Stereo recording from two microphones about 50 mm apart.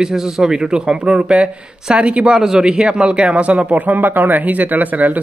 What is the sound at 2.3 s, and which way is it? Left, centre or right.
A man's voice, centre.